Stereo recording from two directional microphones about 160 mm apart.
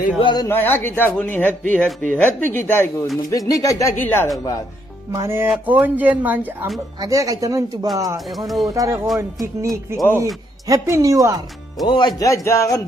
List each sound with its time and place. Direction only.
0.2 s speech: 30° left (ahead or behind)
0.5 s speech: 15° left (ahead or behind)
5.1 s speech: 15° right (ahead or behind)
7.0 s speech: 20° right (ahead or behind)
11.8 s speech: 30° left (ahead or behind)